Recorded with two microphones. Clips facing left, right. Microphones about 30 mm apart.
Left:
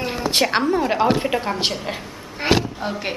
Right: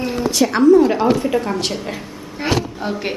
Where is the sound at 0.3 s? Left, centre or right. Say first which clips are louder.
Right 7 dB; left.